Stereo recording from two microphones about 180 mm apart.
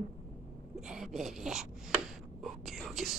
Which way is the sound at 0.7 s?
5° right (ahead or behind).